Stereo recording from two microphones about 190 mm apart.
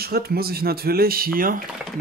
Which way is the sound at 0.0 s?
55° right (ahead or behind).